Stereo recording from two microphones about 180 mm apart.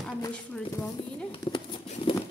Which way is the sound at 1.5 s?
25° left (ahead or behind).